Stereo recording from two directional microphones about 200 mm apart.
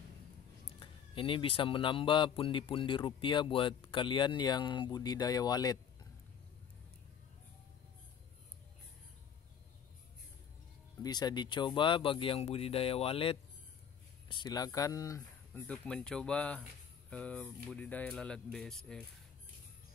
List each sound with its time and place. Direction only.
0.7 s speech: 25° left (ahead or behind)
11.0 s speech: 20° left (ahead or behind); by 19.0 s 5° left (ahead or behind)